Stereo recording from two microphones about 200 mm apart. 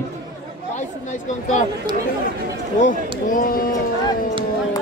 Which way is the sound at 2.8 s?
40° left (ahead or behind).